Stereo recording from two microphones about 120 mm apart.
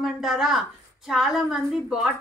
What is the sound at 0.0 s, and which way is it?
A woman's voice, centre (ahead or behind).